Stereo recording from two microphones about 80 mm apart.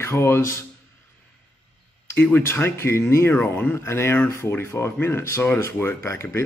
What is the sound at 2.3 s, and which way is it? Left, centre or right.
Speech, left.